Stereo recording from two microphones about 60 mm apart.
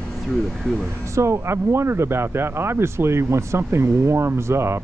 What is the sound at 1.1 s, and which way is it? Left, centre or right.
Speech, right.